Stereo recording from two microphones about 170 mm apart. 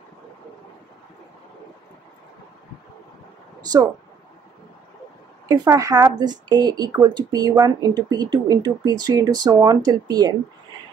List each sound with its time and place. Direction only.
5.5 s a woman's voice: 20° right (ahead or behind)